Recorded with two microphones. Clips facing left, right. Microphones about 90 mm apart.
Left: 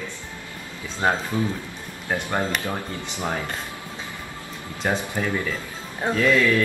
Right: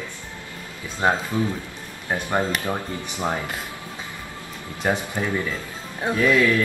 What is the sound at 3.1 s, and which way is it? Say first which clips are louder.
Speech: right 2 dB; 20° right (ahead or behind).